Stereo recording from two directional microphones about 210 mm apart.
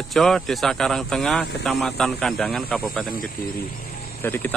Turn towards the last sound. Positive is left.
turn(degrees=10)  # may be behind; listen again after turning